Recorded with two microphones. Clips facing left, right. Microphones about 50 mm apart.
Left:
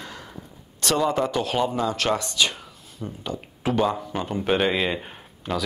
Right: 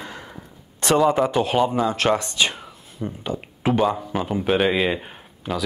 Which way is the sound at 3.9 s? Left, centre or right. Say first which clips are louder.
Right 3 dB; centre.